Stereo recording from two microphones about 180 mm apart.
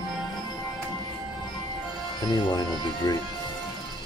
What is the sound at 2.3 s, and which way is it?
Speech, 25° left (ahead or behind).